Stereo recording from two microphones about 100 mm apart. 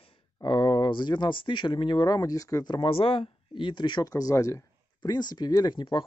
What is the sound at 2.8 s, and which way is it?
Speech, 65° left (ahead or behind).